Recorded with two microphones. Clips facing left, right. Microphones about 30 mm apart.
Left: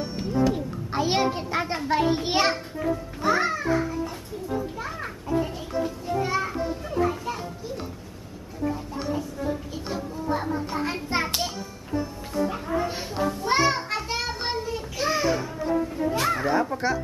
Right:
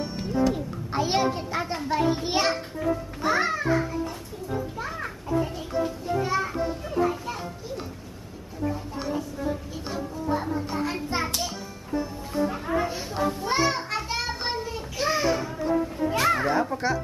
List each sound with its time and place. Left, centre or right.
0.0 s a sound: centre; by 1.8 s left
1.8 s a child's voice: centre
2.8 s music: centre
4.7 s a child's voice: centre
6.0 s children playing: centre
8.9 s a child's voice: centre
10.1 s a child's voice: centre
13.1 s a child's voice: centre
13.5 s children playing: centre
13.7 s a sound: centre
16.4 s a child's voice: centre